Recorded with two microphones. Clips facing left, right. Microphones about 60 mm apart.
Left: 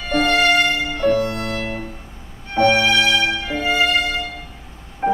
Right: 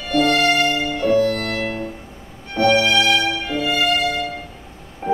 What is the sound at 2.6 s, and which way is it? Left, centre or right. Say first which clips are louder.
Music: even; left.